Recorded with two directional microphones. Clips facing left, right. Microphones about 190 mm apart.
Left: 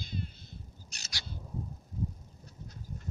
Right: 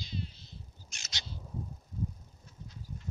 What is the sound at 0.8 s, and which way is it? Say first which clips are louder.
Bird: left 1 dB; 35° left (ahead or behind).